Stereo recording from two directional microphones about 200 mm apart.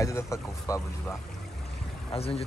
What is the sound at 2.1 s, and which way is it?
Speech, 30° left (ahead or behind).